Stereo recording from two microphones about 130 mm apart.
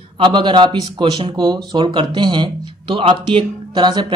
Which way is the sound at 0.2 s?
40° right (ahead or behind).